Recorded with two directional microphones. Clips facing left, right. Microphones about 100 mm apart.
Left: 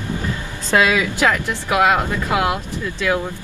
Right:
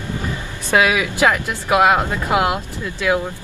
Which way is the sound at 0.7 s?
20° right (ahead or behind).